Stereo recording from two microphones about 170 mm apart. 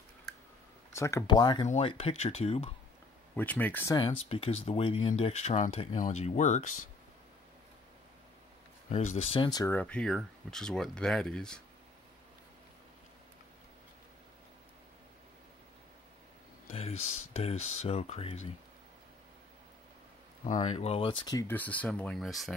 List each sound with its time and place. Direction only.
0.9 s speech: 15° left (ahead or behind)
1.7 s speech: 35° left (ahead or behind)
3.3 s speech: 10° left (ahead or behind)
3.9 s speech: 35° left (ahead or behind)
5.9 s speech: 45° left (ahead or behind)
8.8 s speech: 40° left (ahead or behind); by 9.7 s 25° left (ahead or behind)
9.7 s speech: 10° left (ahead or behind)
16.7 s speech: 35° left (ahead or behind)
20.6 s speech: 35° left (ahead or behind); by 22.5 s centre (ahead or behind)